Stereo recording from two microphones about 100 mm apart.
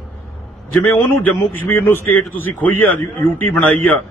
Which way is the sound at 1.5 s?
20° left (ahead or behind).